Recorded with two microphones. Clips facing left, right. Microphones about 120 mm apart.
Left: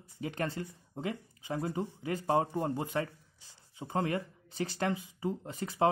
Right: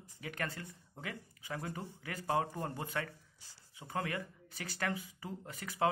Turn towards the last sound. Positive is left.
turn(degrees=25)  # may be behind; listen again after turning